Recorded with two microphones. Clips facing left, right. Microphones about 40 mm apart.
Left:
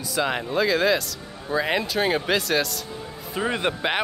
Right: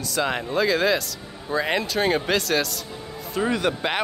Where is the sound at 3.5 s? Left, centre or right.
Left.